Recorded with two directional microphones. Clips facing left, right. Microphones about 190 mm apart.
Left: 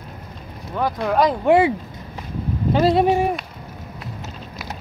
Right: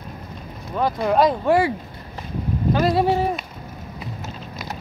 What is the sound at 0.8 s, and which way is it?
Speech, centre (ahead or behind).